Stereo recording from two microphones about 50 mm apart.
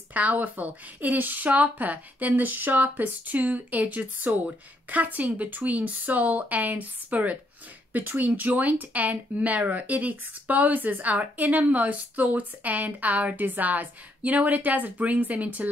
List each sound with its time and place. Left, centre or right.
0.1 s speech: right